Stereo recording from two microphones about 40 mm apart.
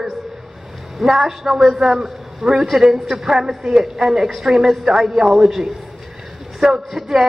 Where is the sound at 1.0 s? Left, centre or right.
Centre.